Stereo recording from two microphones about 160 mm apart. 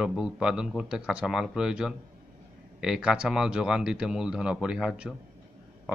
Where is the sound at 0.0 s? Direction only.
5° right (ahead or behind).